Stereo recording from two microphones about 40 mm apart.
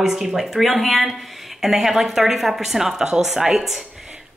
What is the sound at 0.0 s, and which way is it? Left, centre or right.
A woman's voice, centre.